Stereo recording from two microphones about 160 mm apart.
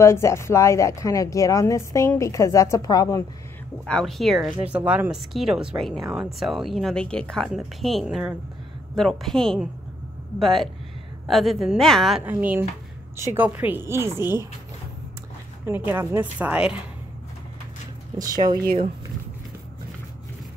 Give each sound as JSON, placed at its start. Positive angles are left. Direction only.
{"t": 0.0, "sound": "speech", "side_deg": 15}
{"t": 3.8, "sound": "speech", "side_deg": 5}
{"t": 12.3, "sound": "speech", "side_deg": -10}
{"t": 15.9, "sound": "speech", "side_deg": -15}
{"t": 18.1, "sound": "speech", "side_deg": -25}